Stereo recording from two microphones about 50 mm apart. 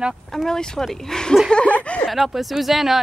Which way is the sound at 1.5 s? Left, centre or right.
Left.